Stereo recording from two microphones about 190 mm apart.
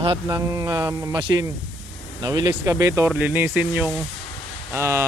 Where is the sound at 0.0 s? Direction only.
20° right (ahead or behind).